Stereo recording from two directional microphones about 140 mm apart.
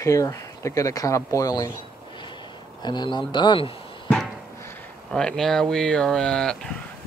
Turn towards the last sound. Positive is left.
turn(degrees=5)  # may be behind; listen again after turning